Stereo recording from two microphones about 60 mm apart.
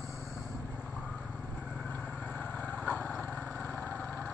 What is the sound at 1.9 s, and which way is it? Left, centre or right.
Vehicle, left.